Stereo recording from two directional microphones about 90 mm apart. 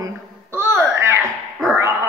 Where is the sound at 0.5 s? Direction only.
30° right (ahead or behind).